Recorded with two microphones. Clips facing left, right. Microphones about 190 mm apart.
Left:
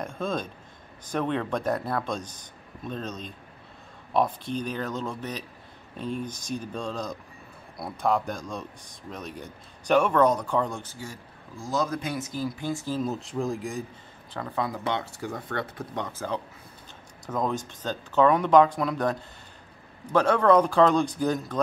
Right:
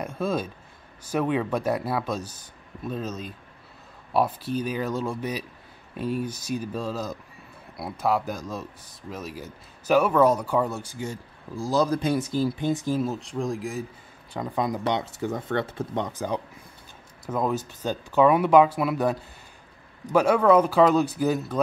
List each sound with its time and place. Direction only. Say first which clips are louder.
0.0 s a sound: right 3 dB; 5° right (ahead or behind)
1.0 s speech: right 3 dB; 5° right (ahead or behind)
11.5 s speech: right 5 dB; 35° right (ahead or behind); by 13.0 s 15° right (ahead or behind)
13.0 s speech: right 1 dB; centre (ahead or behind)
14.3 s speech: right 3 dB; 15° right (ahead or behind)
17.3 s speech: right 2 dB; 5° right (ahead or behind)